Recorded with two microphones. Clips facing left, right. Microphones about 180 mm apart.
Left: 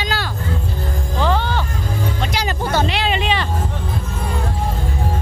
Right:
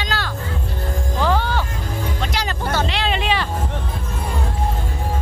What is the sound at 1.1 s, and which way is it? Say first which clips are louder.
Music: left 1 dB; 5° right (ahead or behind).